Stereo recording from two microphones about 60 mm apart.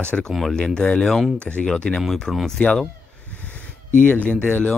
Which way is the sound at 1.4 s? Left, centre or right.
Left.